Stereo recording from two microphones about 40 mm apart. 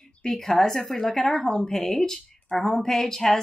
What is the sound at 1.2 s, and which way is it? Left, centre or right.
Speech, left.